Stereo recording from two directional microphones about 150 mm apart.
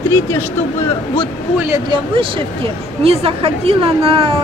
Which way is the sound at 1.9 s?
35° right (ahead or behind).